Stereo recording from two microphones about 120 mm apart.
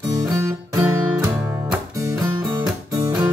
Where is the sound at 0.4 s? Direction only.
25° right (ahead or behind).